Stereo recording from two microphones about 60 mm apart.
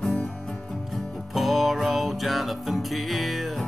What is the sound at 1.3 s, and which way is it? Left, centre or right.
Music, centre.